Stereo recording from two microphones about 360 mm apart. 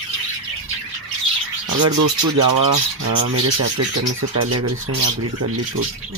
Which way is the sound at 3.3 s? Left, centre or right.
Right.